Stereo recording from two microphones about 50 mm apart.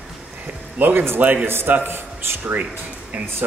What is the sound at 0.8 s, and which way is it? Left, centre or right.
A man's voice, right.